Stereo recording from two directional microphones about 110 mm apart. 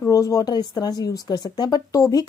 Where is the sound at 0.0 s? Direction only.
30° left (ahead or behind).